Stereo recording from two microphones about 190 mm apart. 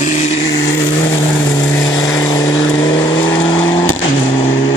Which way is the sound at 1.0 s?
25° left (ahead or behind).